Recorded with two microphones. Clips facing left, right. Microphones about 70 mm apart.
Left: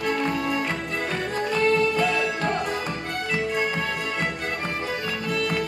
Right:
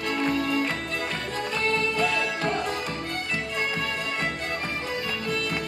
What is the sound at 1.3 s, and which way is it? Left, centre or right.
Music, left.